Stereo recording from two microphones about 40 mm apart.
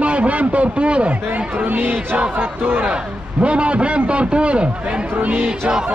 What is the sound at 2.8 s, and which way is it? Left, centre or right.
A man's voice, right.